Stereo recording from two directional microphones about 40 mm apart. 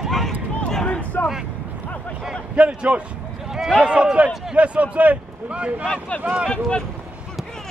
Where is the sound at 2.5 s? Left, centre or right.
Right.